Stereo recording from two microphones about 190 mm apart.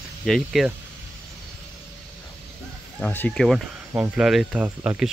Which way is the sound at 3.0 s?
5° left (ahead or behind).